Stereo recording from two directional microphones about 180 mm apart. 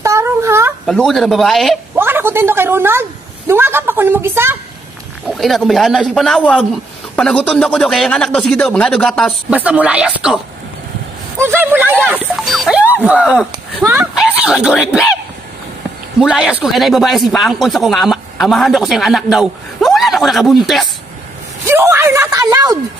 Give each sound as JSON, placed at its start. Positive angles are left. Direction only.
{"t": 0.0, "sound": "a sound", "side_deg": -15}
{"t": 0.8, "sound": "speech", "side_deg": 0}
{"t": 2.0, "sound": "a woman's voice", "side_deg": -10}
{"t": 5.3, "sound": "speech", "side_deg": 0}
{"t": 9.5, "sound": "speech", "side_deg": -10}
{"t": 16.2, "sound": "speech", "side_deg": -5}
{"t": 21.6, "sound": "speech", "side_deg": -15}